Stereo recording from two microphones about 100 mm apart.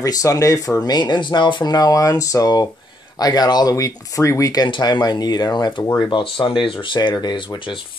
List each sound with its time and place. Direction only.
0.0 s speech: 35° left (ahead or behind)
4.6 s speech: 50° left (ahead or behind)